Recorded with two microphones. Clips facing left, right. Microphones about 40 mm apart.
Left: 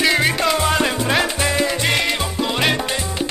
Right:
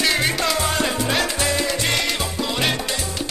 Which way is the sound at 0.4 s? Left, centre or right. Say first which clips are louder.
Left 3 dB; left.